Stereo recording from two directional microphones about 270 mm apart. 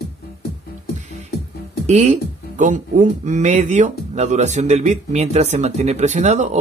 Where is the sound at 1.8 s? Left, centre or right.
Right.